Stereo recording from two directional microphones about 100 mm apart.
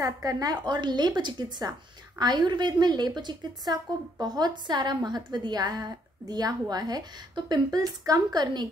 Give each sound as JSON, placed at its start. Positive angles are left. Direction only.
{"t": 0.0, "sound": "a woman's voice", "side_deg": -35}